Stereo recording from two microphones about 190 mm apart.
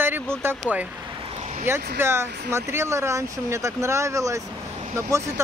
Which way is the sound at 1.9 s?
15° right (ahead or behind).